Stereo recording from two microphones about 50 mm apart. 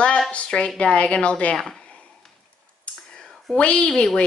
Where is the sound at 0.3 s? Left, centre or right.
Left.